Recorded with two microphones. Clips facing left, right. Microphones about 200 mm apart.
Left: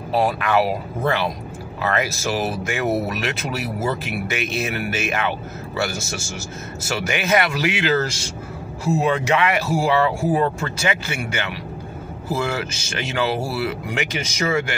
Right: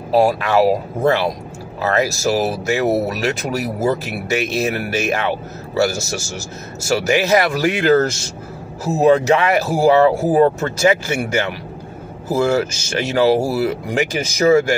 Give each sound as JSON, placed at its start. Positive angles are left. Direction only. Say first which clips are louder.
{"t": 0.1, "sound": "speech", "louder": "right 5 dB", "side_deg": -35}
{"t": 7.0, "sound": "speech", "louder": "right 4 dB", "side_deg": -35}
{"t": 8.9, "sound": "speech", "louder": "right 7 dB", "side_deg": -40}